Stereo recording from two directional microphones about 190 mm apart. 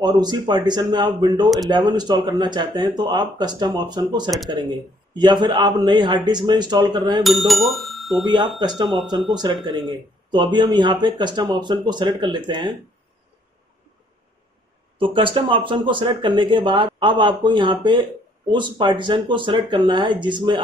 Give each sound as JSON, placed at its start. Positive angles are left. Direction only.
{"t": 0.0, "sound": "speech", "side_deg": -20}
{"t": 7.2, "sound": "speech", "side_deg": 0}
{"t": 8.5, "sound": "speech", "side_deg": -20}
{"t": 8.8, "sound": "speech", "side_deg": 0}
{"t": 9.3, "sound": "speech", "side_deg": -20}
{"t": 15.0, "sound": "speech", "side_deg": -25}